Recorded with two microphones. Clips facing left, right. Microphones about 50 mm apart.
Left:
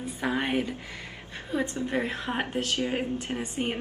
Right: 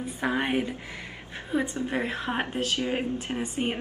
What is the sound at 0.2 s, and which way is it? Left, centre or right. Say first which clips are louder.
A woman's voice: right 1 dB; centre.